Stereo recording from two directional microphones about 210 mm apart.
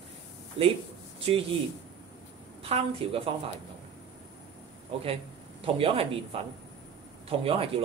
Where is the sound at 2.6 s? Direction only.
25° right (ahead or behind).